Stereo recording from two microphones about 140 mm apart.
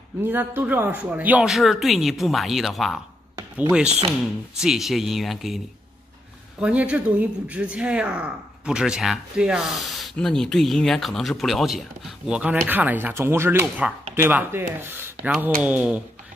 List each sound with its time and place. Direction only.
0.2 s speech: 15° right (ahead or behind)
4.6 s speech: 5° right (ahead or behind)
6.6 s speech: 10° right (ahead or behind)